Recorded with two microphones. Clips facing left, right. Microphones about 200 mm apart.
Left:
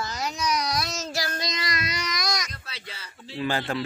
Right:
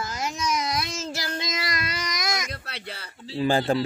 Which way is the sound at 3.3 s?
35° right (ahead or behind).